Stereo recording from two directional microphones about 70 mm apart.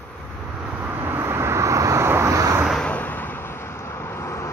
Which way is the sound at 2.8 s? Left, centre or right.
Left.